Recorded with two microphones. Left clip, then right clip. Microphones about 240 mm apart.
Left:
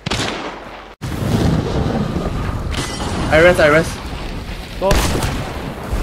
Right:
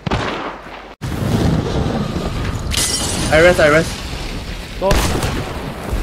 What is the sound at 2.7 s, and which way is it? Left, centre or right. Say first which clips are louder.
Shatter: right 5 dB; right.